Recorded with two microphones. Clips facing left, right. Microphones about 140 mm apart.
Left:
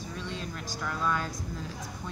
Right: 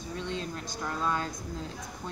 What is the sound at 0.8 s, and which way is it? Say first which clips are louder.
Speech: even; 25° right (ahead or behind).